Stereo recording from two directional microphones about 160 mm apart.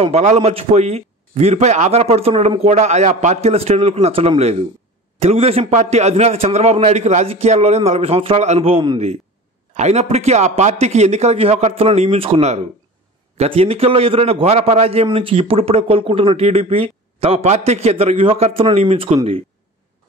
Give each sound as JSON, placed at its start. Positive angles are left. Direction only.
{"t": 0.0, "sound": "a man's voice", "side_deg": -45}